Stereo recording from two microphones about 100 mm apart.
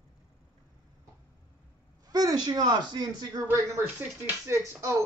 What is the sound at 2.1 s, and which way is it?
Speech, 40° right (ahead or behind).